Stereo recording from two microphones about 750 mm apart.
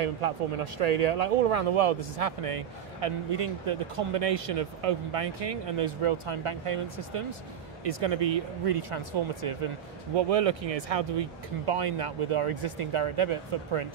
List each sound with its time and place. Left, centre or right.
0.0 s speech: right